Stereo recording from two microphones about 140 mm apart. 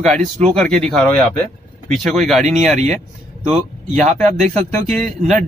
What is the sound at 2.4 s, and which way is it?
Speech, 55° right (ahead or behind).